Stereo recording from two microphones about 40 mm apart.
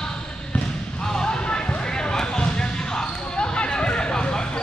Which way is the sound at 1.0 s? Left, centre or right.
Centre.